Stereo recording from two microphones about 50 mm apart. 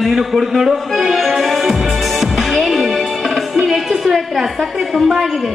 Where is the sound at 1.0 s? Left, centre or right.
Centre.